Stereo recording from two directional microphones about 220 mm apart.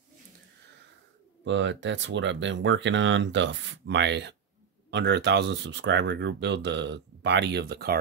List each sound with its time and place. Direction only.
1.4 s speech: 55° right (ahead or behind)